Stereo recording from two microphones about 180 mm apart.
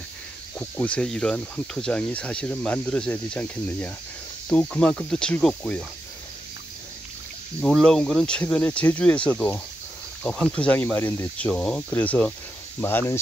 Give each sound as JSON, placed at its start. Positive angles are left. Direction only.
{"t": 0.6, "sound": "speech", "side_deg": 5}
{"t": 7.6, "sound": "speech", "side_deg": 0}